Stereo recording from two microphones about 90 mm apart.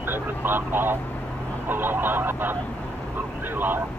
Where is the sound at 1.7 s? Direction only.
20° right (ahead or behind).